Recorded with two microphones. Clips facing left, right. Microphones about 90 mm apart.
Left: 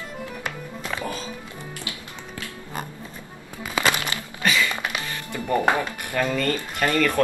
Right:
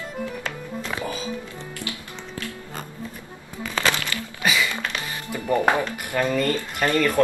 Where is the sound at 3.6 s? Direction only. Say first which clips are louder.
Left 1 dB; 15° left (ahead or behind).